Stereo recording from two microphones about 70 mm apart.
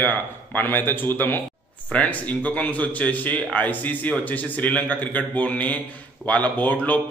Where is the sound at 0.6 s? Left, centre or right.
Left.